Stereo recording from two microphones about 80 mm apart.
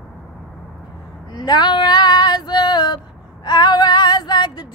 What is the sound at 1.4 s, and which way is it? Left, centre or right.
Female singing, left.